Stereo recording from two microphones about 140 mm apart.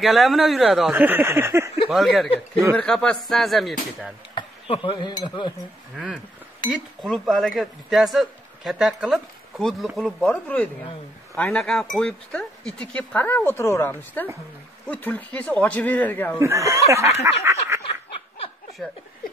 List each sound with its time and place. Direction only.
0.0 s a man's voice: centre (ahead or behind)
0.9 s speech: 15° right (ahead or behind)
1.9 s a man's voice: centre (ahead or behind)
4.4 s speech: 40° left (ahead or behind)
7.0 s a man's voice: centre (ahead or behind)
16.3 s speech: 20° right (ahead or behind)
18.8 s a man's voice: 5° left (ahead or behind)